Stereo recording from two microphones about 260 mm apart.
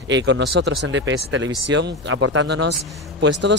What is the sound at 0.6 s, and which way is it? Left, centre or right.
Speech, right.